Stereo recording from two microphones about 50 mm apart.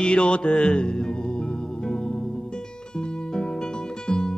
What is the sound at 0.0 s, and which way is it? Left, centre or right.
Music, centre.